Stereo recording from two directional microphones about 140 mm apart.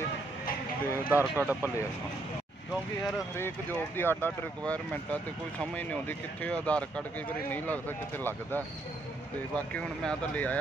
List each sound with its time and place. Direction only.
1.0 s speech: 15° right (ahead or behind)
3.3 s speech: 15° left (ahead or behind)
9.8 s speech: 10° left (ahead or behind)